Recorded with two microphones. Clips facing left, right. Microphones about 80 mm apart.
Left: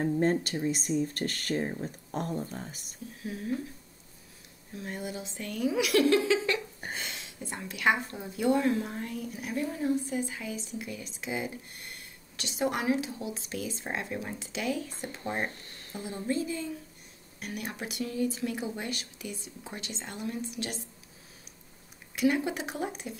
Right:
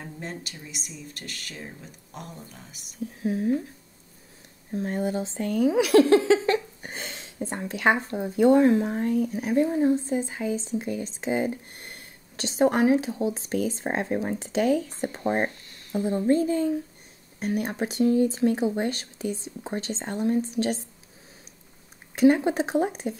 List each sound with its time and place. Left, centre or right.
0.2 s speech: left
3.2 s speech: right
4.7 s speech: right
22.1 s speech: right